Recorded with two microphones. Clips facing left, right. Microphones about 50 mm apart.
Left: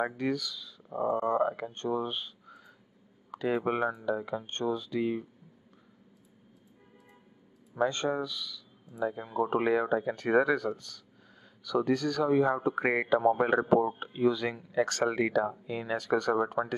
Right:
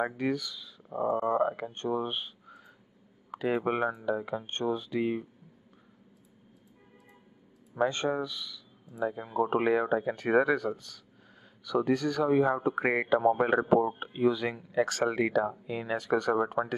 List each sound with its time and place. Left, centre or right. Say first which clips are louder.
0.2 s speech: right 1 dB; centre
0.8 s speech: even; centre
7.7 s speech: right 1 dB; centre